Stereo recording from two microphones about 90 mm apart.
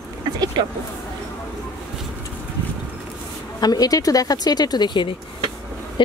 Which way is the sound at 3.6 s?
45° left (ahead or behind).